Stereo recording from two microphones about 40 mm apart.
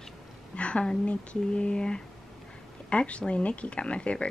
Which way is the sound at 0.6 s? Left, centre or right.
Left.